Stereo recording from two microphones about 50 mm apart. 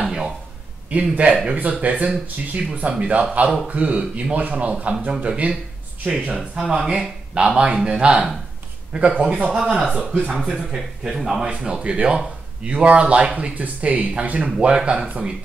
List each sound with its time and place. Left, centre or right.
0.0 s a sound: centre
0.8 s speech: right
6.6 s speech: centre
6.9 s speech: right
10.4 s speech: centre